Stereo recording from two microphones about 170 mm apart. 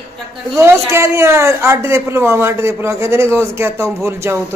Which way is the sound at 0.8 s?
15° right (ahead or behind).